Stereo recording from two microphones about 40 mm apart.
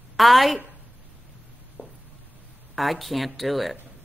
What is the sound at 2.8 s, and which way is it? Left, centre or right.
A woman's voice, centre.